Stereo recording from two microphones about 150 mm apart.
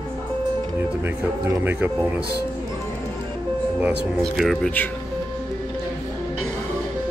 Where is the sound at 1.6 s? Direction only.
15° right (ahead or behind).